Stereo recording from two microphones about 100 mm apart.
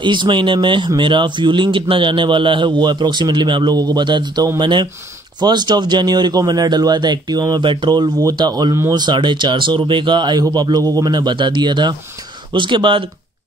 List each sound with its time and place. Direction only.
0.0 s speech: 50° right (ahead or behind)
7.7 s speech: 55° right (ahead or behind)
8.2 s speech: 40° right (ahead or behind)